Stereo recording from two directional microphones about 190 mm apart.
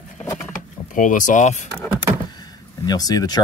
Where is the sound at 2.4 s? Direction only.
20° left (ahead or behind).